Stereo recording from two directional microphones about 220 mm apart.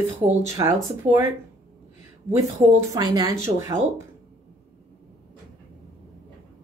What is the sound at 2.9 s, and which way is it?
Speech, 15° right (ahead or behind).